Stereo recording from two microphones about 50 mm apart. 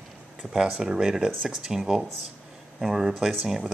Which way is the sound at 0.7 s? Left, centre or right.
Centre.